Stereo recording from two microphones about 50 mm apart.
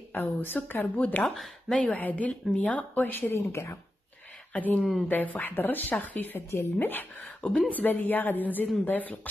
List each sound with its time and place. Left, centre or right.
0.1 s a woman's voice: left
1.3 s speech: centre
2.0 s a woman's voice: left
3.2 s speech: left
4.6 s a woman's voice: left